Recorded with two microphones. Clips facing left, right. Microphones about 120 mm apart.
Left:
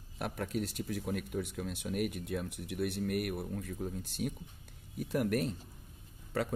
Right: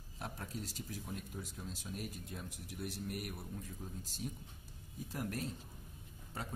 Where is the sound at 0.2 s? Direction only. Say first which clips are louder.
Left 9 dB; 65° left (ahead or behind).